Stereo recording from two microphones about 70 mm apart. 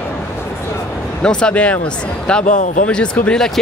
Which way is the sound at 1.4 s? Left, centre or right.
Centre.